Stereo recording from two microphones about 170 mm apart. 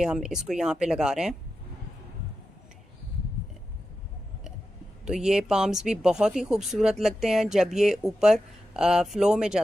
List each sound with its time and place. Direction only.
0.0 s speech: 5° right (ahead or behind)
5.0 s speech: 5° right (ahead or behind)